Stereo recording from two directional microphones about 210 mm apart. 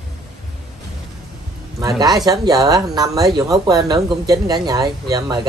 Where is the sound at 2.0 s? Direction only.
20° right (ahead or behind).